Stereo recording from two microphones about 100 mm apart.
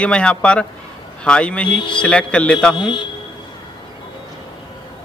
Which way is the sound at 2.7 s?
55° left (ahead or behind).